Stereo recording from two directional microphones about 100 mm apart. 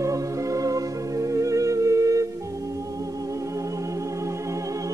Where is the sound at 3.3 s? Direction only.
30° right (ahead or behind).